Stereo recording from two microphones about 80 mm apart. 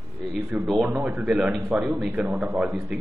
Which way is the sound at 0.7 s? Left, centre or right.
Centre.